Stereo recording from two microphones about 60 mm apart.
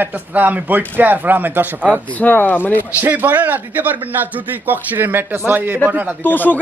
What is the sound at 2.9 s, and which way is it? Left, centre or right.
Speech, right.